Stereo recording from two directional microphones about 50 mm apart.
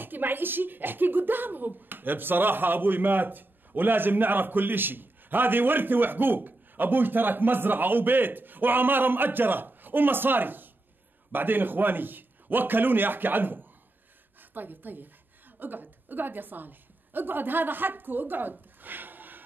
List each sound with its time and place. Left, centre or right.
0.0 s a woman's voice: right